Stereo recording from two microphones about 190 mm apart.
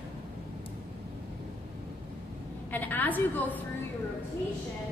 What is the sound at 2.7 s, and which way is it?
Speech, 10° left (ahead or behind).